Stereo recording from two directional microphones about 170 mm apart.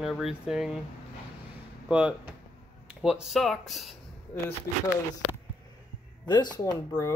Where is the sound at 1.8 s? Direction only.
5° right (ahead or behind).